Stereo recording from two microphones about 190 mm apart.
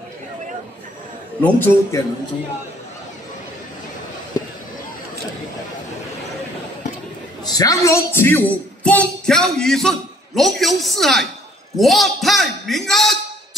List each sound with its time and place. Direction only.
1.4 s a man's voice: 10° left (ahead or behind)
7.4 s a man's voice: 20° left (ahead or behind); by 13.2 s centre (ahead or behind)